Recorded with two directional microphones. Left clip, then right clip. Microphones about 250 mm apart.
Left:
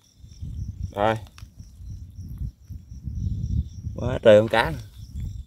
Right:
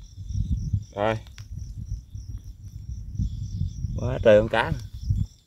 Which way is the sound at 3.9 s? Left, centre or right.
Centre.